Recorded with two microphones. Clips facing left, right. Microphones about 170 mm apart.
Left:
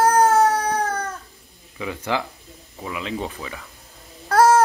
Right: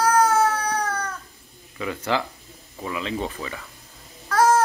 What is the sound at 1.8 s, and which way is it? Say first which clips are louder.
Speech: even; 15° left (ahead or behind).